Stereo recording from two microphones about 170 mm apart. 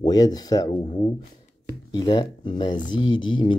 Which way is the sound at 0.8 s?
35° left (ahead or behind).